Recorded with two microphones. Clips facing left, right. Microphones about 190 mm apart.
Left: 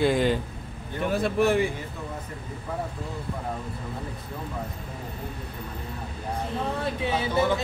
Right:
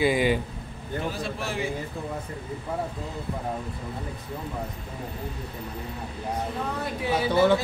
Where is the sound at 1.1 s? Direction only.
60° left (ahead or behind).